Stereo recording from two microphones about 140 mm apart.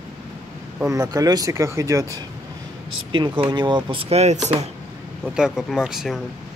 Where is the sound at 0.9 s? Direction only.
25° right (ahead or behind).